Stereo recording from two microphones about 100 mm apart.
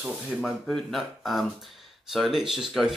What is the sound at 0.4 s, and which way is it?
Speech, centre (ahead or behind).